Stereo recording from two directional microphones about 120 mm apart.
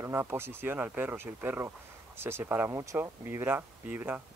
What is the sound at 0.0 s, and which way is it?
Speech, 20° right (ahead or behind).